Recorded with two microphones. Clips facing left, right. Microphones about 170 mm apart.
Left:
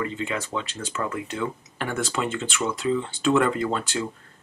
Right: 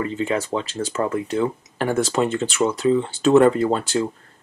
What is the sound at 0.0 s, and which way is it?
Speech, 35° right (ahead or behind).